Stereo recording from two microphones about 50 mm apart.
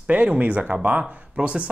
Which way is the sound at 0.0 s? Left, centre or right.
Right.